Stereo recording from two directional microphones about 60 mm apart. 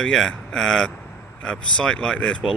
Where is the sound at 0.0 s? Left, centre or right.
Centre.